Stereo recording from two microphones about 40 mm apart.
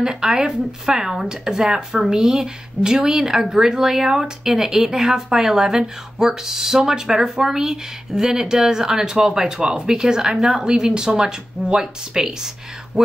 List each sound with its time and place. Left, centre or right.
0.0 s a woman's voice: centre
9.6 s speech: right
9.8 s a woman's voice: centre
10.3 s a woman's voice: centre
10.8 s a woman's voice: centre
12.9 s speech: centre